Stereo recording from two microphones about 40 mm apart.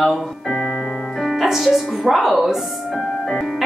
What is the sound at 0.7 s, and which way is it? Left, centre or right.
Keyboard, left.